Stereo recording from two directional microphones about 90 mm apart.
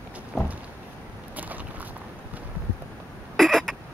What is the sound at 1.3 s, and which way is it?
Walk, 20° right (ahead or behind).